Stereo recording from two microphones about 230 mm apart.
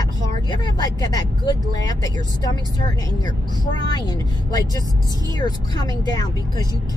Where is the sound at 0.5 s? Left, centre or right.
Centre.